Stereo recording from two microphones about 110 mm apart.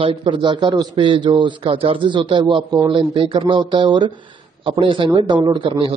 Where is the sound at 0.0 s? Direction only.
50° right (ahead or behind).